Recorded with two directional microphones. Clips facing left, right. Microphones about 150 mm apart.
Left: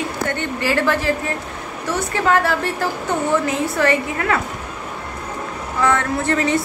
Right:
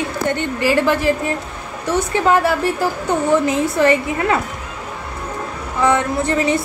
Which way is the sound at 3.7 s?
20° right (ahead or behind).